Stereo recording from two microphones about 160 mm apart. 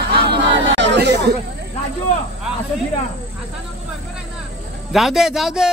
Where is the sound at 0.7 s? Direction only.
90° right.